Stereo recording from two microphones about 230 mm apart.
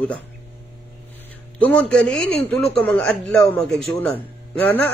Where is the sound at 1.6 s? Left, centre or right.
Centre.